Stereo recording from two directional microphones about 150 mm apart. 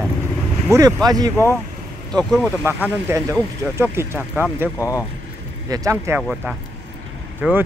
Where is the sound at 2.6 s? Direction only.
15° right (ahead or behind).